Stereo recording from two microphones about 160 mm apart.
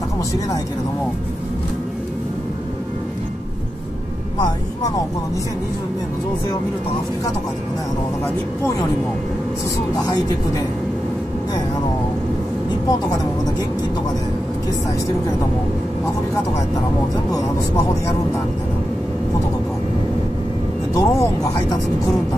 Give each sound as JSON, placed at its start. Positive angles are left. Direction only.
{"t": 20.9, "sound": "speech", "side_deg": 20}